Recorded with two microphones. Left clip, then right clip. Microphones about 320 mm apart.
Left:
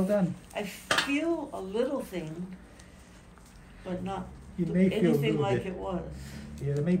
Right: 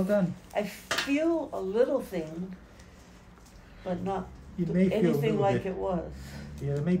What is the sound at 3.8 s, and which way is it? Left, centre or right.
Speech, right.